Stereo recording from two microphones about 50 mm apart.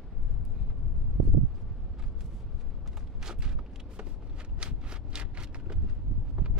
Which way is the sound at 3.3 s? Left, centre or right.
Centre.